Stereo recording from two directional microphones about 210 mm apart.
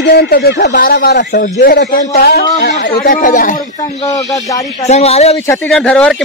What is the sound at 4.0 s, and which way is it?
Speech, 15° left (ahead or behind).